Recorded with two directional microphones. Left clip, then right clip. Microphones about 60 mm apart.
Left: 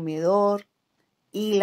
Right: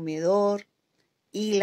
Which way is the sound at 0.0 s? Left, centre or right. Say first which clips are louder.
Left 2 dB; left.